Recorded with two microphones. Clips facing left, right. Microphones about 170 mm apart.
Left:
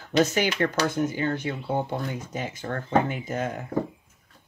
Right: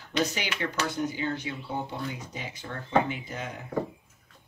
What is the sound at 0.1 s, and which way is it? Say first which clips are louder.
Speech: left 7 dB; 45° left (ahead or behind).